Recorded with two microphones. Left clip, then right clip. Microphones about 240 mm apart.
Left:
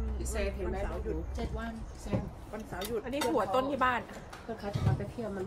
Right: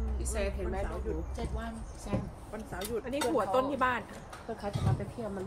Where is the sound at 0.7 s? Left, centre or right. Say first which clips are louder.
Even; centre.